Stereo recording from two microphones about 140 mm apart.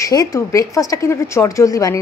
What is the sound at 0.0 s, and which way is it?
A woman's voice, 25° left (ahead or behind).